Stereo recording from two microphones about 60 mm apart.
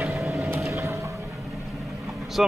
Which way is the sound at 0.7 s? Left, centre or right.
Right.